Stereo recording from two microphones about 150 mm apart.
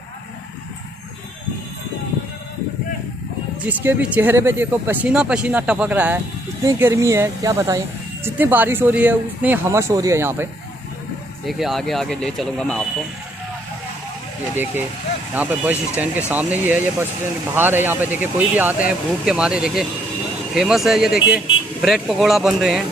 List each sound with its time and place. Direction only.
3.6 s speech: 10° right (ahead or behind)
11.4 s speech: centre (ahead or behind)
15.3 s speech: 10° right (ahead or behind)